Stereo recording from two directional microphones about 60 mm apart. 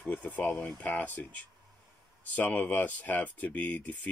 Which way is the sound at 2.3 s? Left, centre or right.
Left.